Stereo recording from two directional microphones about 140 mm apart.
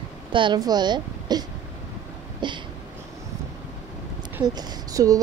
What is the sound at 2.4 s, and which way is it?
Speech, 35° right (ahead or behind).